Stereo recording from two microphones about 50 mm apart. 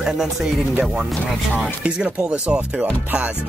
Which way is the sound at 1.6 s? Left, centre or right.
Right.